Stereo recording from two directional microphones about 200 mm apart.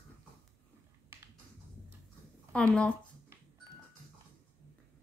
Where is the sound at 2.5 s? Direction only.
5° left (ahead or behind).